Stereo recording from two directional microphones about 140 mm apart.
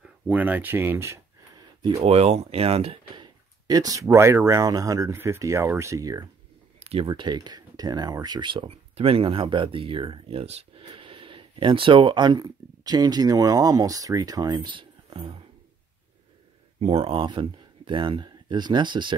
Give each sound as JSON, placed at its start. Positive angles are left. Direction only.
{"t": 0.3, "sound": "speech", "side_deg": -10}
{"t": 2.0, "sound": "speech", "side_deg": -50}
{"t": 3.6, "sound": "speech", "side_deg": -25}
{"t": 6.8, "sound": "a sound", "side_deg": -45}
{"t": 7.1, "sound": "speech", "side_deg": -35}
{"t": 16.8, "sound": "speech", "side_deg": -45}